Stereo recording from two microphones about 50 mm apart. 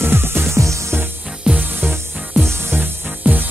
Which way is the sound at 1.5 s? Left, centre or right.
Centre.